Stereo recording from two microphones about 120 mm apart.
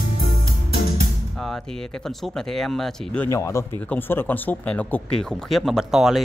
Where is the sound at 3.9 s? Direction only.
15° left (ahead or behind).